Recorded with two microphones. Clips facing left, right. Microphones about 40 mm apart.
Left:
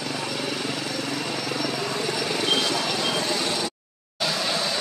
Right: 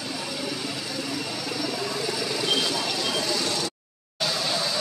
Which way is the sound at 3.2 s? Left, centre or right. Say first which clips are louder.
Left 1 dB; left.